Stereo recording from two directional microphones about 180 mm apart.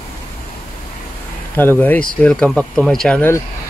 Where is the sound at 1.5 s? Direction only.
10° left (ahead or behind).